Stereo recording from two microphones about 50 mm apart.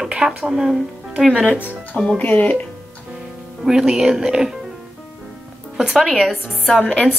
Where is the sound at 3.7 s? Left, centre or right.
Centre.